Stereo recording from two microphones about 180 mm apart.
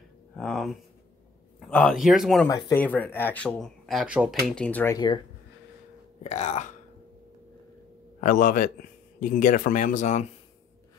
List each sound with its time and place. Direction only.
0.4 s speech: centre (ahead or behind)
2.4 s speech: 20° left (ahead or behind)
2.8 s speech: 10° left (ahead or behind)
4.6 s speech: 10° left (ahead or behind)
4.9 s speech: 25° left (ahead or behind)
6.2 s speech: 40° left (ahead or behind)
8.2 s speech: 50° left (ahead or behind)